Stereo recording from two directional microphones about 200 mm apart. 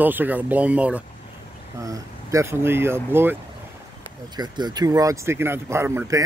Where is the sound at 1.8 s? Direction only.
15° right (ahead or behind).